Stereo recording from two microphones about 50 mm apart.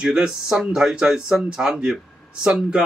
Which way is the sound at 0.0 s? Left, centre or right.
Centre.